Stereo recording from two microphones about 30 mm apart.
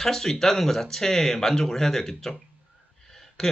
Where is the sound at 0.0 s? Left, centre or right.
Centre.